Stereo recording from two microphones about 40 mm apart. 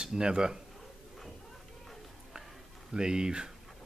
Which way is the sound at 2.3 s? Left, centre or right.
Centre.